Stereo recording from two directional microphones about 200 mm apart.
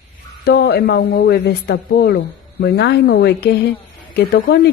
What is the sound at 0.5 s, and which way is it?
A woman's voice, 55° left (ahead or behind).